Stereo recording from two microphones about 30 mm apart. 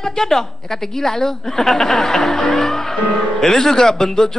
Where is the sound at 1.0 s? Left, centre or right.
Centre.